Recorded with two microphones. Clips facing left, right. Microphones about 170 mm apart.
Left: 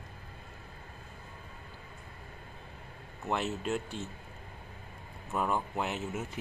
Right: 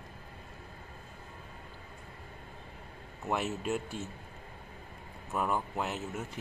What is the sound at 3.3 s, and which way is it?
Speech, 5° right (ahead or behind).